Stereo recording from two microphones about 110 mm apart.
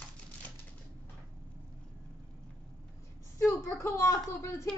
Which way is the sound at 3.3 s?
25° left (ahead or behind).